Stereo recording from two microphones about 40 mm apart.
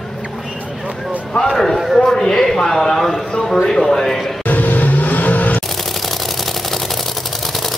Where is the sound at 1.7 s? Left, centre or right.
Centre.